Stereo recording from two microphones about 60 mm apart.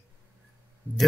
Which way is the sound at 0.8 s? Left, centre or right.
Left.